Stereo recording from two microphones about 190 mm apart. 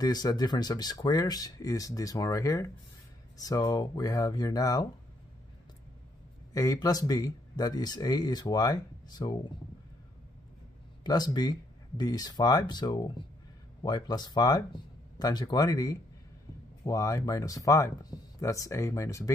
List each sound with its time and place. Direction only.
0.0 s speech: 20° left (ahead or behind)
6.5 s speech: 20° left (ahead or behind)
11.1 s speech: 20° left (ahead or behind)